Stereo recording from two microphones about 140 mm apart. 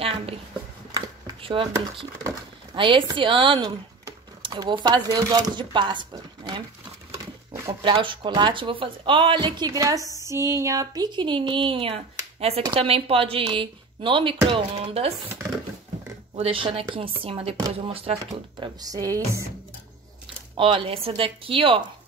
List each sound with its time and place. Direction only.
0.9 s a sound: 35° right (ahead or behind)
2.7 s speech: 35° right (ahead or behind)
7.8 s speech: 35° right (ahead or behind)
16.3 s speech: 40° right (ahead or behind)
18.6 s speech: 25° right (ahead or behind)
20.5 s speech: 40° right (ahead or behind)